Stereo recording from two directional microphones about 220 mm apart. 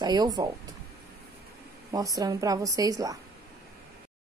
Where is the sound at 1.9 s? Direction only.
15° right (ahead or behind).